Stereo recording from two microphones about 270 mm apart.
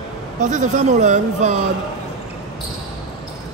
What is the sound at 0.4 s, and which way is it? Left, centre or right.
Speech, right.